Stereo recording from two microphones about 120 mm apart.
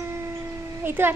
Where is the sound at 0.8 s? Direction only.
20° right (ahead or behind).